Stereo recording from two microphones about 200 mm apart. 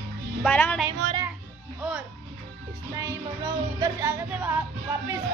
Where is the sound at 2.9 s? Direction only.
15° right (ahead or behind).